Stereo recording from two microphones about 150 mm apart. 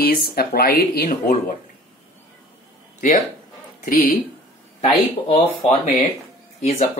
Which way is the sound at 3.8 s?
65° left (ahead or behind).